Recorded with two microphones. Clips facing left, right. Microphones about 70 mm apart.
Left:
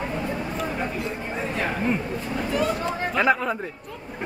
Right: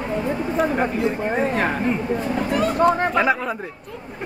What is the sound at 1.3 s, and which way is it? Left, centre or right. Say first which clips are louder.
Speech: right 6 dB; right.